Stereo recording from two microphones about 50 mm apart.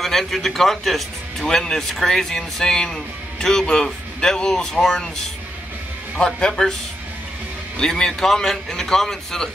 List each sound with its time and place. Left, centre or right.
0.0 s speech: centre
6.1 s speech: centre
7.7 s speech: centre